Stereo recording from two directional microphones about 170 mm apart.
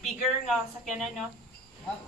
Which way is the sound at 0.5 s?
Centre (ahead or behind).